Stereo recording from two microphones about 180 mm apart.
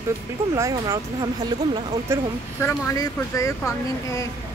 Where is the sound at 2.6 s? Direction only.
15° left (ahead or behind).